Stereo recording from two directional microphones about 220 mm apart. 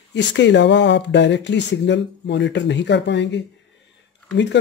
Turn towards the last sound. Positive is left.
turn(degrees=50)  # may be behind; listen again after turning